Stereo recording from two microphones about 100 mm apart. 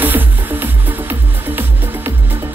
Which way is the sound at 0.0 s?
20° right (ahead or behind).